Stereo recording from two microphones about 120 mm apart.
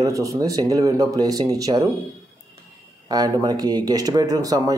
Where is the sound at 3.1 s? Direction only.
35° right (ahead or behind).